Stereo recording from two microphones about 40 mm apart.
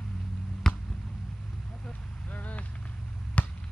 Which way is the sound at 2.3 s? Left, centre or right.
Left.